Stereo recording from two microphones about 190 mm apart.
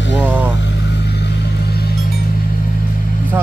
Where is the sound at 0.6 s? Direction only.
65° left (ahead or behind).